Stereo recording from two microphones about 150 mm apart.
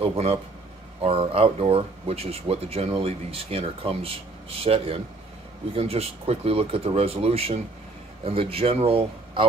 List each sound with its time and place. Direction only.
0.0 s speech: 45° right (ahead or behind)